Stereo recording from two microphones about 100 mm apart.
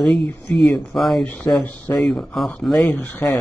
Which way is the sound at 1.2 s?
15° left (ahead or behind).